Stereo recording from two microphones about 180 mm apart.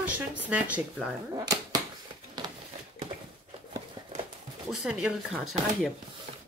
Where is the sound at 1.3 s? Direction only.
20° right (ahead or behind).